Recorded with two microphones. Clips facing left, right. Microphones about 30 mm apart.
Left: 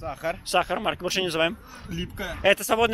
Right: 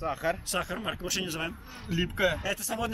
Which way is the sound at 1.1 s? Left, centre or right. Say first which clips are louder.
Left 10 dB; left.